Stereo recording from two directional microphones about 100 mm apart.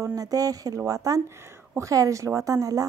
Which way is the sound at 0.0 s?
35° right (ahead or behind).